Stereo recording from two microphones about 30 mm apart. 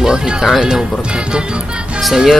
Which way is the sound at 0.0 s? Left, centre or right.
Right.